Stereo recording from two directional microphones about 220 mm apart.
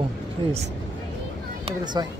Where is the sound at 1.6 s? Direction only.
20° right (ahead or behind).